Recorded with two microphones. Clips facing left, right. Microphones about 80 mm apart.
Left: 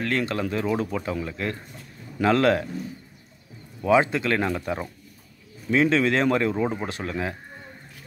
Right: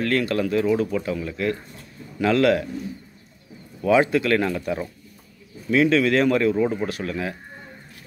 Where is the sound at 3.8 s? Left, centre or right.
Left.